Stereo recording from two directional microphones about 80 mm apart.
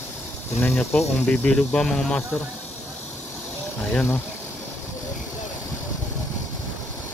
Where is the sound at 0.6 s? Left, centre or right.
Left; by 2.2 s centre.